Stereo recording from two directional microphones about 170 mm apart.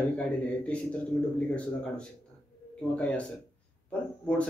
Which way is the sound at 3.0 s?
5° left (ahead or behind).